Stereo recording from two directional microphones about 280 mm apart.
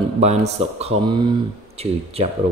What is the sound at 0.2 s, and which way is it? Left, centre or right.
Speech, right.